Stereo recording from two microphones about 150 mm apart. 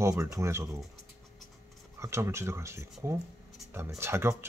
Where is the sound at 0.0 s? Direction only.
20° right (ahead or behind).